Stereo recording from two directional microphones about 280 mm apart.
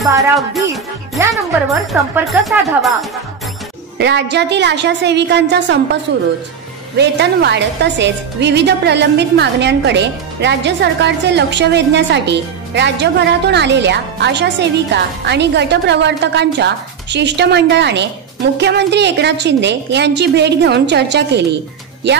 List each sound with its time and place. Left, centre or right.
1.3 s speech: centre
4.0 s a woman's voice: right
7.0 s a woman's voice: right